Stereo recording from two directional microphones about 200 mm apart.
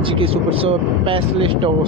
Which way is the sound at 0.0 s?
25° right (ahead or behind).